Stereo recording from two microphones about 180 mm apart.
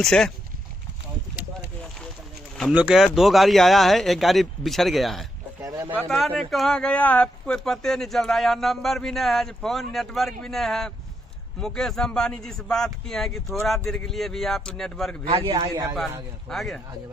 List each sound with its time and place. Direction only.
0.0 s speech: 5° left (ahead or behind)
2.5 s speech: 5° right (ahead or behind)
5.6 s a sound: 15° right (ahead or behind)
5.9 s speech: centre (ahead or behind)
15.2 s a man's voice: 30° right (ahead or behind)
15.9 s speech: centre (ahead or behind)